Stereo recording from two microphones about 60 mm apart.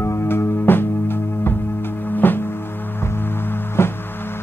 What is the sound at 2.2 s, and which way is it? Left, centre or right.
Music, left.